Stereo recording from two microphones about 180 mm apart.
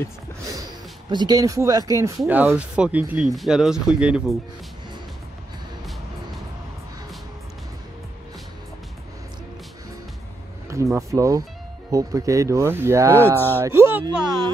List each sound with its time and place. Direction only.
1.1 s speech: 20° right (ahead or behind); by 4.4 s 5° right (ahead or behind)
10.7 s speech: 15° right (ahead or behind)
13.2 s speech: 10° left (ahead or behind)
13.6 s speech: 15° right (ahead or behind)